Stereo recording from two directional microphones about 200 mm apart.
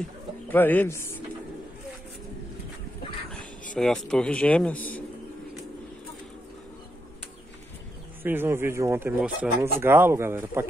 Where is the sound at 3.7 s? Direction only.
5° left (ahead or behind).